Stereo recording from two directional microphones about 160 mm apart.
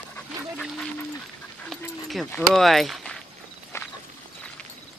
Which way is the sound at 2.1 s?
Centre (ahead or behind).